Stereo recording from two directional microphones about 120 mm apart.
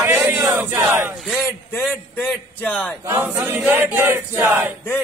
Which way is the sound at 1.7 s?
15° left (ahead or behind).